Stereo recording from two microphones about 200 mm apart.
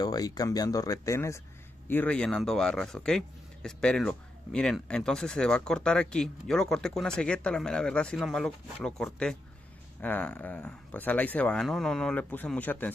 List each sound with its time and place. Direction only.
0.0 s speech: 20° left (ahead or behind)